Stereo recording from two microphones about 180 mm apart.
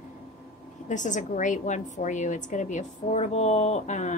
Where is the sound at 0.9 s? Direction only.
45° left (ahead or behind).